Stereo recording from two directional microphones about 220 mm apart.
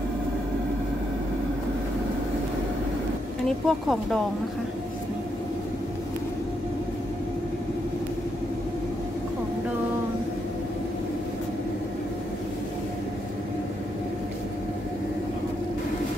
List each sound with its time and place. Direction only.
3.4 s speech: centre (ahead or behind)